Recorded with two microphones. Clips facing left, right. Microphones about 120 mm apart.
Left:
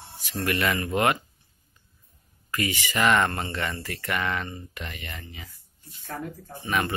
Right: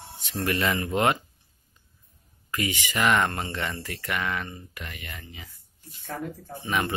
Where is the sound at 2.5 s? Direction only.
15° right (ahead or behind).